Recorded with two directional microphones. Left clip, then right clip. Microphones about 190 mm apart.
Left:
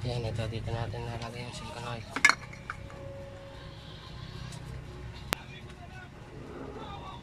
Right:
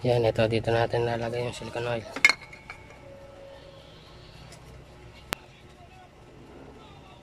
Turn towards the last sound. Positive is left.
turn(degrees=0)  # may be behind; listen again after turning